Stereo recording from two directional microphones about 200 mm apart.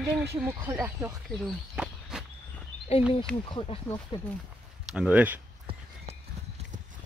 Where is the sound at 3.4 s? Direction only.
25° left (ahead or behind).